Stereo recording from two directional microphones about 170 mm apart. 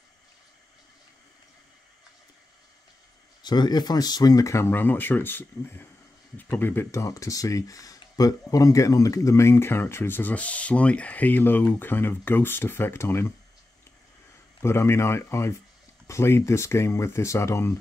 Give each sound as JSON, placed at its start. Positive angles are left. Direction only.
{"t": 3.4, "sound": "speech", "side_deg": 25}
{"t": 14.6, "sound": "speech", "side_deg": 15}